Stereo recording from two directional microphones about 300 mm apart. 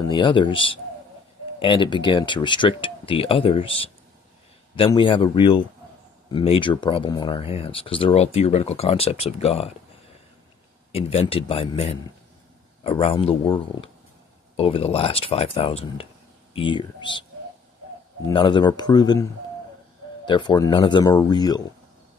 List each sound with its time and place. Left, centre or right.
0.0 s speech: centre
10.9 s speech: centre
18.2 s speech: centre
20.2 s speech: centre